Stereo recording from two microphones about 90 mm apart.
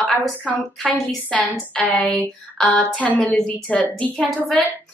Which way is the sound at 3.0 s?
15° left (ahead or behind).